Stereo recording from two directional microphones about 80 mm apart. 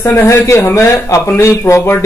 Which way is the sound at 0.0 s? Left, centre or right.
Left.